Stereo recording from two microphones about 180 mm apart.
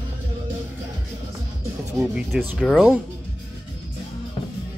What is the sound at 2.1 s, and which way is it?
Speech, centre (ahead or behind).